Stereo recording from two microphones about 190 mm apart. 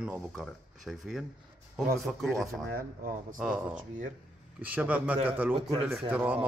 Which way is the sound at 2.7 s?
45° right (ahead or behind).